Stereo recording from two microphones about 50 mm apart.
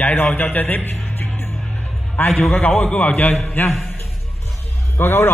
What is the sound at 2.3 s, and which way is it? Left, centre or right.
Speech, centre.